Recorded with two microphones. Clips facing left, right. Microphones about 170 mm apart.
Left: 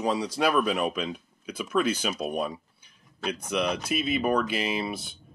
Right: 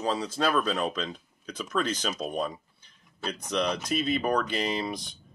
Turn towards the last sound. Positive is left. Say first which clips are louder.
# even
turn(degrees=5)  # may be behind; listen again after turning